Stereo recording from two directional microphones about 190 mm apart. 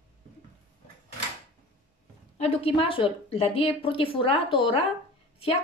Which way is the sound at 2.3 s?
30° left (ahead or behind).